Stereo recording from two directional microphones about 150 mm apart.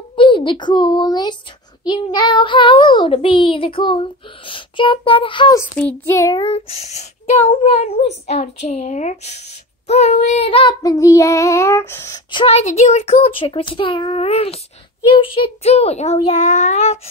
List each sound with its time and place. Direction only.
0.1 s a child's voice: 35° left (ahead or behind)
1.9 s child singing: 30° left (ahead or behind)
5.8 s a child's voice: 10° left (ahead or behind)
6.1 s child singing: 25° left (ahead or behind)
6.4 s speech: 40° left (ahead or behind)
9.8 s child singing: 45° left (ahead or behind); by 12.2 s 15° left (ahead or behind)
12.3 s child singing: 35° left (ahead or behind)
15.0 s speech: 35° left (ahead or behind)